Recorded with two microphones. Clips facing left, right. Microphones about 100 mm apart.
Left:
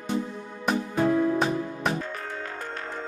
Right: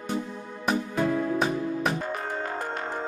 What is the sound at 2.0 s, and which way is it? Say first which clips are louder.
Music: right 3 dB; 15° right (ahead or behind).